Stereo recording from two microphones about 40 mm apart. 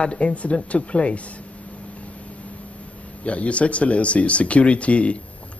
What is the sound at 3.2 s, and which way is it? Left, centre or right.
Speech, left.